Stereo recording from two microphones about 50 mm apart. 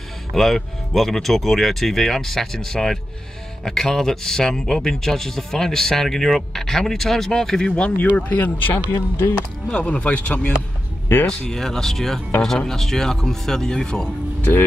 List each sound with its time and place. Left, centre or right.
0.3 s a man's voice: centre
8.2 s speech: left
8.9 s speech: left
9.8 s speech: left
11.2 s a man's voice: centre